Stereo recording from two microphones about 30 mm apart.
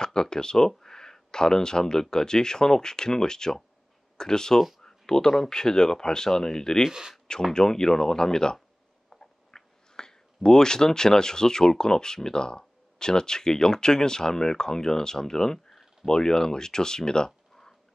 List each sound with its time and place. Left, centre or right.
0.0 s speech: left
4.6 s speech: centre
4.8 s a sound: centre
5.5 s speech: left
6.9 s speech: right
7.5 s speech: centre